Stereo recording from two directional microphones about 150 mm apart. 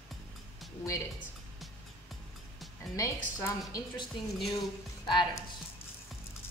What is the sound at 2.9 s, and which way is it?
A woman's voice, 20° left (ahead or behind).